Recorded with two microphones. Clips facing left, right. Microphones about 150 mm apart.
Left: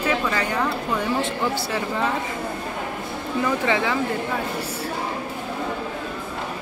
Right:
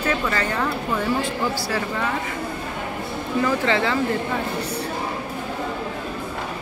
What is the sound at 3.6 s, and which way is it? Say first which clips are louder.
Speech: right 1 dB; 10° left (ahead or behind).